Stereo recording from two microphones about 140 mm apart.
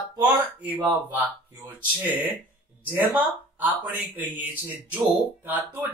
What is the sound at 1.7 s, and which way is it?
Speech, 10° right (ahead or behind).